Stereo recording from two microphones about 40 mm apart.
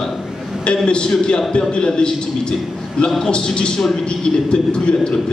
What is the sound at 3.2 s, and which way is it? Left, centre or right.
A man's voice, left.